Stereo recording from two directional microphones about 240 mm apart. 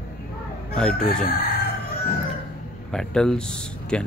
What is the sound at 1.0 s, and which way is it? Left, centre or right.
Speech, left.